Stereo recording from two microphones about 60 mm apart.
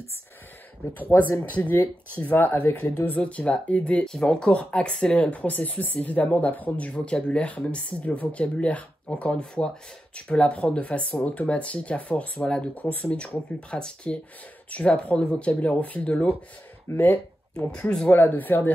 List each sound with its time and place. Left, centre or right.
0.9 s speech: left
16.9 s speech: left
17.6 s speech: centre
18.1 s speech: left